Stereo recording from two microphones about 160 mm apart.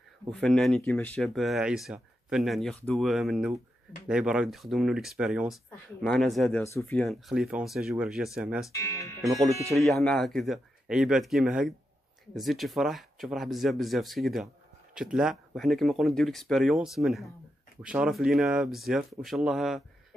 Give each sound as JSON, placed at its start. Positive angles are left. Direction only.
{"t": 0.3, "sound": "speech", "side_deg": 5}
{"t": 6.6, "sound": "speech", "side_deg": 15}
{"t": 7.1, "sound": "speech", "side_deg": 0}
{"t": 8.7, "sound": "speech", "side_deg": 20}
{"t": 9.2, "sound": "speech", "side_deg": 0}